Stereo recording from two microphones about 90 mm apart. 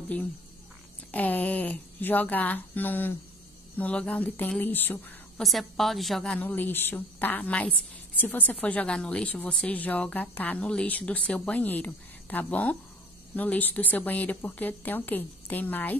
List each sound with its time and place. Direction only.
1.1 s a woman's voice: 15° left (ahead or behind)
5.4 s a woman's voice: centre (ahead or behind)
6.2 s a woman's voice: 15° left (ahead or behind)